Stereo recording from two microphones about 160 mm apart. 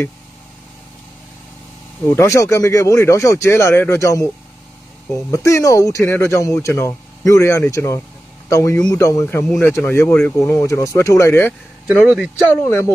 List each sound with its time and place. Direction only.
2.0 s speech: 20° left (ahead or behind)
11.9 s speech: 5° right (ahead or behind)
12.4 s speech: 15° left (ahead or behind)